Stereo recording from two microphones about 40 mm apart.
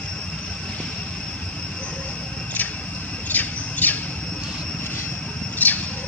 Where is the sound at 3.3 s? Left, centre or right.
Left.